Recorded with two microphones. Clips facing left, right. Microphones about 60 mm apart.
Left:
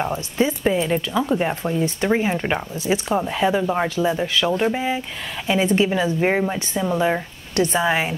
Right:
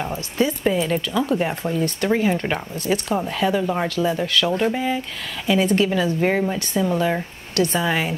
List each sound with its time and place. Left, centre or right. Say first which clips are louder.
0.0 s speech: left 1 dB; left
0.7 s speech: left 1 dB; centre